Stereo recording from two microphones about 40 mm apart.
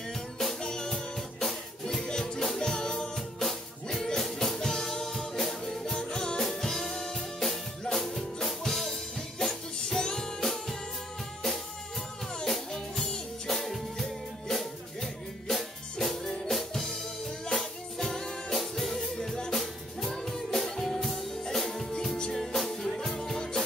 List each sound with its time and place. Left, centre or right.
0.1 s music: centre
0.6 s music: centre
12.4 s music: centre